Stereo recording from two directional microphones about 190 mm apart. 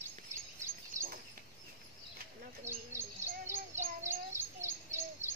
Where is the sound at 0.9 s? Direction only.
15° right (ahead or behind).